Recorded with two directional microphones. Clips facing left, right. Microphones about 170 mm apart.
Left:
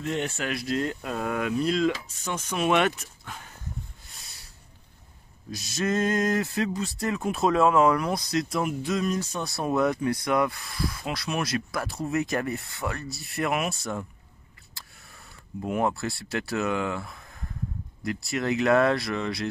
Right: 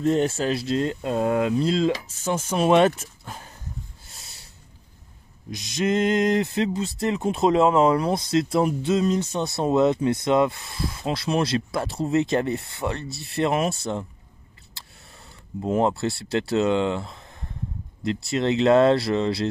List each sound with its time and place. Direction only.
0.0 s speech: 35° right (ahead or behind)
4.1 s snort: 25° right (ahead or behind)
5.5 s speech: 20° right (ahead or behind)
15.6 s speech: 25° right (ahead or behind)